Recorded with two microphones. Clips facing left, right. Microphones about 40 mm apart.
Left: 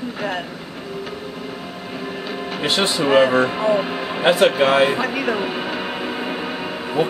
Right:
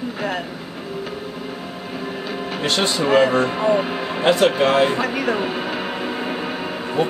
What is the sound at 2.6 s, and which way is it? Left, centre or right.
Speech, centre.